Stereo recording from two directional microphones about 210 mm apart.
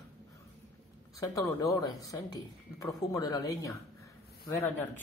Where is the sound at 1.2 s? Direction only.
15° left (ahead or behind).